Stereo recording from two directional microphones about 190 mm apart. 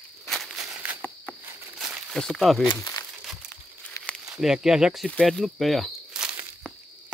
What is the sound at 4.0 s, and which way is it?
Speech, centre (ahead or behind).